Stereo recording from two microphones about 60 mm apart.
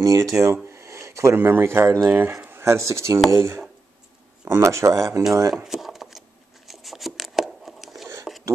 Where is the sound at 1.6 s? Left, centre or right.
Right.